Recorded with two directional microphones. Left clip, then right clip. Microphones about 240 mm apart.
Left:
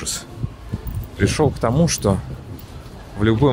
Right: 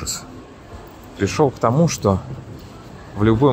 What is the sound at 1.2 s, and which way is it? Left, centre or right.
Speech, centre.